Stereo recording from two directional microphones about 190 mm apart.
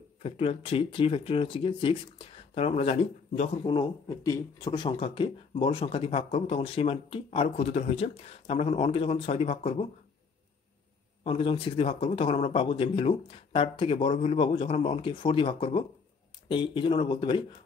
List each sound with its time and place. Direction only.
0.2 s speech: 30° left (ahead or behind)
11.2 s speech: 30° left (ahead or behind)